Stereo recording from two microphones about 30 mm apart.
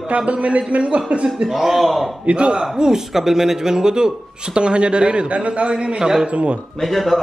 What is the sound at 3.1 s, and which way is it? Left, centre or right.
A man's voice, centre.